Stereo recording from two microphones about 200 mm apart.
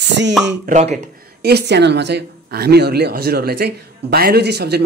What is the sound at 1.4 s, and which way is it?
Speech, 55° right (ahead or behind).